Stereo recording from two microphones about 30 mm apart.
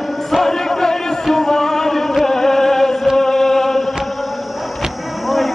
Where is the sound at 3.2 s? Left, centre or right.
Centre.